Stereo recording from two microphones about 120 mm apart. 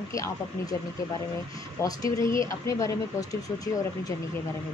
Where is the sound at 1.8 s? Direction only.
30° left (ahead or behind).